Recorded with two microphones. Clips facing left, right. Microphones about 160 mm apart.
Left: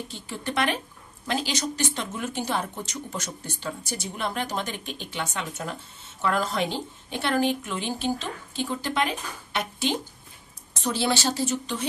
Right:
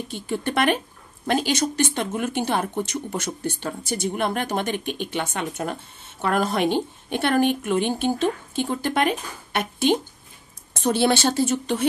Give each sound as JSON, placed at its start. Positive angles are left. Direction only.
{"t": 0.1, "sound": "speech", "side_deg": -60}